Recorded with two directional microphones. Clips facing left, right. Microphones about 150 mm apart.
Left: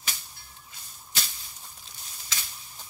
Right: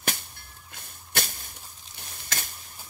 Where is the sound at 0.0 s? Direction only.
55° right (ahead or behind).